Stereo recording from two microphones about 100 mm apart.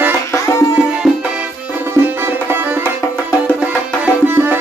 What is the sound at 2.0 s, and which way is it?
Music, 25° right (ahead or behind).